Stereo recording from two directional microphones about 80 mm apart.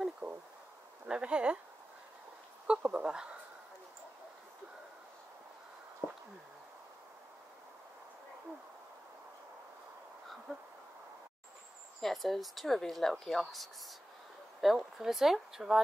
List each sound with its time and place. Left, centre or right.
0.2 s a sound: centre
1.0 s speech: centre
2.6 s speech: centre
10.5 s speech: centre
12.0 s speech: centre